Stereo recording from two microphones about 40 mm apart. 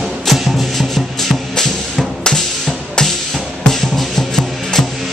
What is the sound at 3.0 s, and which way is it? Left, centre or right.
Music, centre.